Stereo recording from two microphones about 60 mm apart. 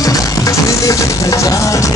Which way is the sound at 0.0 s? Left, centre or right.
Left.